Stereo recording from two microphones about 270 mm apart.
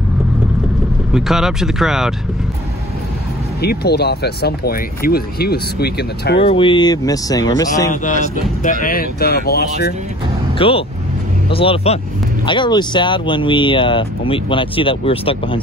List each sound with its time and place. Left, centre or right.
1.1 s speech: centre
3.6 s speech: left
6.4 s speech: centre
8.8 s speech: left
10.6 s speech: centre